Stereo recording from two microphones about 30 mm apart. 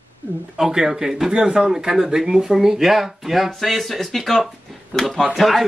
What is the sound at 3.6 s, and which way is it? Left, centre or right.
Speech, centre.